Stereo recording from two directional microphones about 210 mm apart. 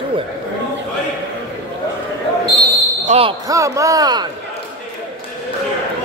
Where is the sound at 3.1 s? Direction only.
25° right (ahead or behind).